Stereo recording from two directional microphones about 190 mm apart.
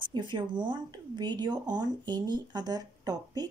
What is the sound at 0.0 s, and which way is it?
Speech, 25° right (ahead or behind).